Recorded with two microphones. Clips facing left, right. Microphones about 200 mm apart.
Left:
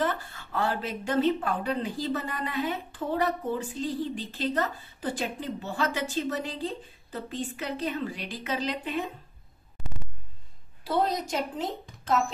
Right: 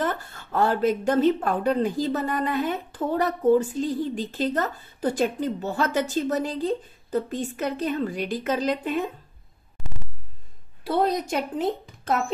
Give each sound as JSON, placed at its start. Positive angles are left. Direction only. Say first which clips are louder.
{"t": 0.0, "sound": "speech", "louder": "right 2 dB", "side_deg": -45}
{"t": 10.8, "sound": "a woman's voice", "louder": "right 4 dB", "side_deg": -55}